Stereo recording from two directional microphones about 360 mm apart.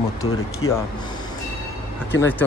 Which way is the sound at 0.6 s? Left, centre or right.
Left.